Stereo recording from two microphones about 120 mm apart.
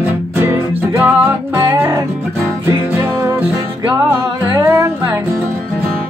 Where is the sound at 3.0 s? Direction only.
20° right (ahead or behind).